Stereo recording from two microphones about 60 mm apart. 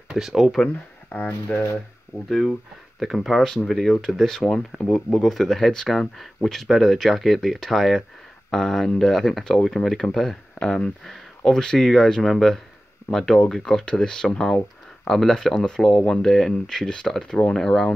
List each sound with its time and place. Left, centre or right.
0.1 s speech: centre
1.5 s speech: left
2.2 s speech: centre